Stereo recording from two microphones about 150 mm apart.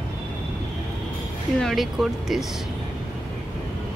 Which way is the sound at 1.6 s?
Centre (ahead or behind).